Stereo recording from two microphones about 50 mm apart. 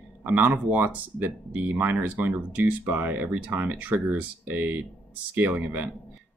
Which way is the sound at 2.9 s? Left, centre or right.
Right.